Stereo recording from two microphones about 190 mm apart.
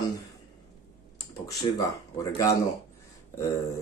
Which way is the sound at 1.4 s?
20° left (ahead or behind).